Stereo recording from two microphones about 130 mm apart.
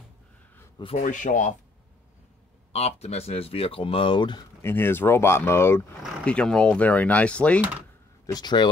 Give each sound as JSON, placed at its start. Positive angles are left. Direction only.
{"t": 0.9, "sound": "speech", "side_deg": 75}
{"t": 2.7, "sound": "speech", "side_deg": 55}
{"t": 4.6, "sound": "speech", "side_deg": 15}
{"t": 8.3, "sound": "speech", "side_deg": 30}